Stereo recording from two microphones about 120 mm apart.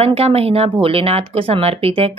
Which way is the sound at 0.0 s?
55° right (ahead or behind).